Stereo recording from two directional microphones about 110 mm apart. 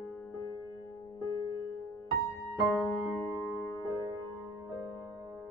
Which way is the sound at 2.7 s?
Centre (ahead or behind).